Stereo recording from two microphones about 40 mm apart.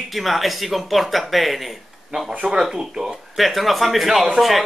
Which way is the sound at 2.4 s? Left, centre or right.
Centre.